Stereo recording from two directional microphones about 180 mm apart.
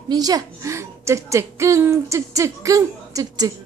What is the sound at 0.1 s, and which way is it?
A woman's voice, 20° right (ahead or behind).